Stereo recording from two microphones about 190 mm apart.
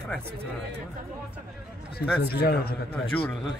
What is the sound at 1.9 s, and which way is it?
Speech, 55° left (ahead or behind).